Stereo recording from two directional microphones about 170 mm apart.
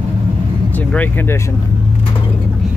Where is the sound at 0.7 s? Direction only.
10° left (ahead or behind).